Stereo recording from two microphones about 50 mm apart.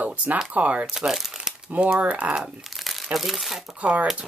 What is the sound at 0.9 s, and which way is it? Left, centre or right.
Speech, centre.